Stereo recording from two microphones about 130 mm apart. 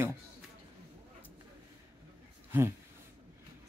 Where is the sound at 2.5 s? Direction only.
20° right (ahead or behind).